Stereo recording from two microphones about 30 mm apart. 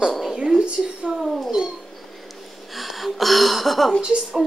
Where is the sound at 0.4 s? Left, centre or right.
Right.